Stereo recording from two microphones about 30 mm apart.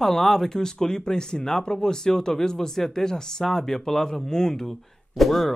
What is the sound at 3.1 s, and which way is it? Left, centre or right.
Speech, left.